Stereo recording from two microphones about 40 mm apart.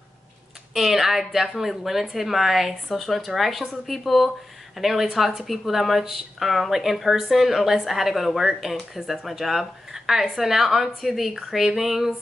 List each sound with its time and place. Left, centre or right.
0.7 s a woman's voice: centre